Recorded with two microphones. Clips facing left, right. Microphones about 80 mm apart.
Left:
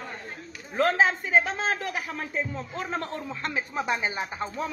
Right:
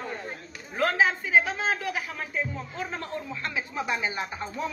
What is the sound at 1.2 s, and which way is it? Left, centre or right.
Speech, left.